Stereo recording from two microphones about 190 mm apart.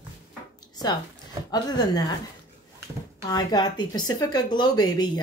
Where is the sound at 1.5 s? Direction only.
20° left (ahead or behind).